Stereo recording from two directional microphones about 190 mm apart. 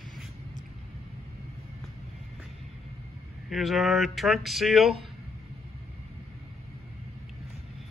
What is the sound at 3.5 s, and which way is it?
A man's voice, centre (ahead or behind).